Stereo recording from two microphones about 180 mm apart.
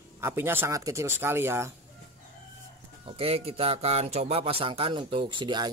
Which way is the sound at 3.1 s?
35° right (ahead or behind).